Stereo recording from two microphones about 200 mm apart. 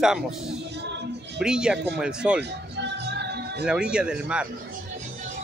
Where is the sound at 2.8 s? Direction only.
55° right (ahead or behind).